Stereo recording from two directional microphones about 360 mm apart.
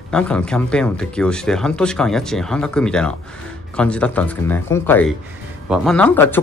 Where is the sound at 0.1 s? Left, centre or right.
Centre.